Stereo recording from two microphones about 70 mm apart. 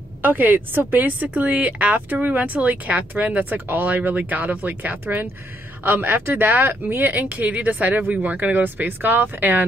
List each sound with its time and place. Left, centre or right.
0.2 s a woman's voice: right
5.0 s a woman's voice: right